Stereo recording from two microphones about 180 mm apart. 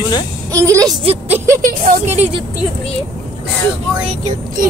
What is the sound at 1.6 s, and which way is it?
Speech, 50° right (ahead or behind).